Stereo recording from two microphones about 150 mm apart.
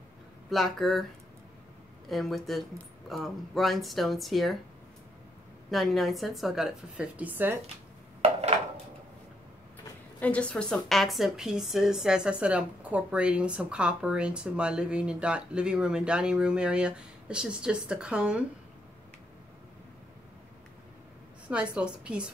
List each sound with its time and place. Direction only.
0.5 s a woman's voice: centre (ahead or behind)
2.0 s a woman's voice: centre (ahead or behind)
5.7 s a woman's voice: centre (ahead or behind)
8.2 s a sound: 45° right (ahead or behind)
10.2 s a woman's voice: 10° left (ahead or behind)
21.5 s a woman's voice: 5° right (ahead or behind)